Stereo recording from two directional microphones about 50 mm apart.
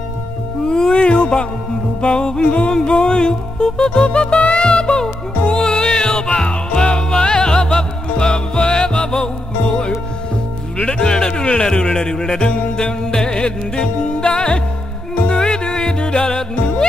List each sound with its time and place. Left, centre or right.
0.7 s music: centre
10.8 s speech: centre
15.2 s music: centre